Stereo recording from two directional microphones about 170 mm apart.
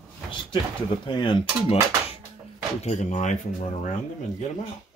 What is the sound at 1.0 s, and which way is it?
Cutlery, 30° left (ahead or behind).